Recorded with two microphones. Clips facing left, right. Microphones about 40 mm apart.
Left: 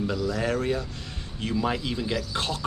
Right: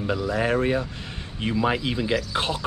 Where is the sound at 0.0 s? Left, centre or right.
Right.